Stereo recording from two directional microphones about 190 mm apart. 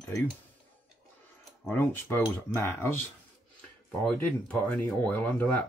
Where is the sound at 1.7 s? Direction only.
10° left (ahead or behind).